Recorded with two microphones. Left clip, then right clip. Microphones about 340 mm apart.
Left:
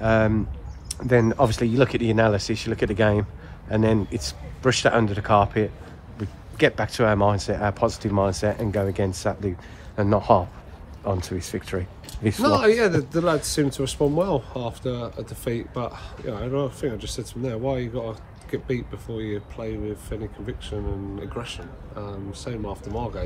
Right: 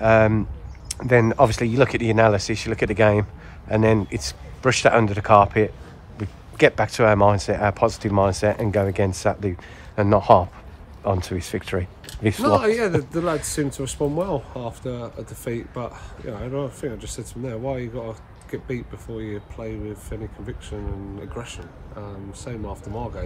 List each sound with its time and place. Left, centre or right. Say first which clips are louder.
0.0 s speech: right 5 dB; centre
12.4 s speech: left 1 dB; centre